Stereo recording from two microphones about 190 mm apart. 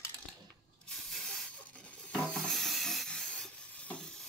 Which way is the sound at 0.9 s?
Centre (ahead or behind).